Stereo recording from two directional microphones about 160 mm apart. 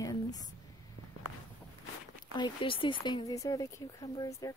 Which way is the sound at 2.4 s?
30° left (ahead or behind).